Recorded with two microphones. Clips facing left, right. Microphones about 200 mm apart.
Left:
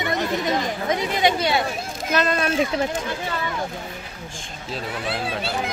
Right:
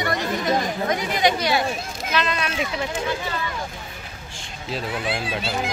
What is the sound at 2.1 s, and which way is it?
Speech, 45° left (ahead or behind).